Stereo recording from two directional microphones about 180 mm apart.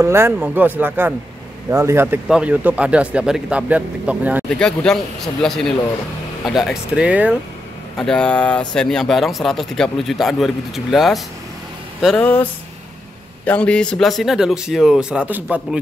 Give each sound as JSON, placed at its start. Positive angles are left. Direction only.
{"t": 0.0, "sound": "speech", "side_deg": -15}
{"t": 4.6, "sound": "speech", "side_deg": 5}
{"t": 8.0, "sound": "speech", "side_deg": 5}
{"t": 13.5, "sound": "speech", "side_deg": 5}